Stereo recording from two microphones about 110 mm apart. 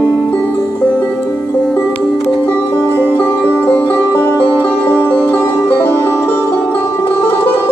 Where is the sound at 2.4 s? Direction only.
15° left (ahead or behind).